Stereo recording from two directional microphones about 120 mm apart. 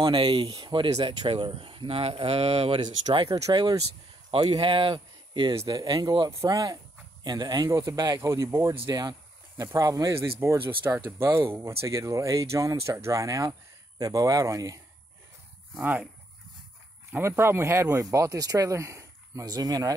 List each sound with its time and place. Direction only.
0.0 s speech: 45° right (ahead or behind)
3.1 s speech: 30° right (ahead or behind)
4.3 s speech: 50° right (ahead or behind)
5.7 s speech: 35° right (ahead or behind)
15.7 s speech: 10° right (ahead or behind)
17.1 s speech: 20° right (ahead or behind)